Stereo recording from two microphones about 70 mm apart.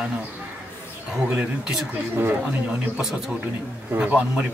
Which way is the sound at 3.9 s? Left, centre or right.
Right.